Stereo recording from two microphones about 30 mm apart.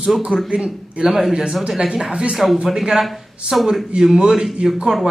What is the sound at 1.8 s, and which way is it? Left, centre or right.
Speech, right.